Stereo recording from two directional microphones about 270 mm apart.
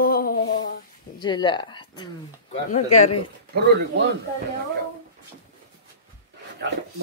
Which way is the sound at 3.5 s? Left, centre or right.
Right.